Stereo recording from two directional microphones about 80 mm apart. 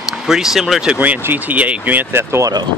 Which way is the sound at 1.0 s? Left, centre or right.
Right.